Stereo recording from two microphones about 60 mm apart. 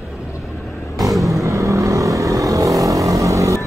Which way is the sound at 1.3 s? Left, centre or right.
Right.